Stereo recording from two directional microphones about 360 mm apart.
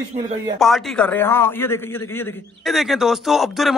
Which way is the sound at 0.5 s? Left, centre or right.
Centre.